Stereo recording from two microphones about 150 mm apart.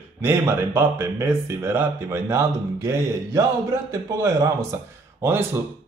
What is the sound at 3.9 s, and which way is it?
A man's voice, 20° right (ahead or behind).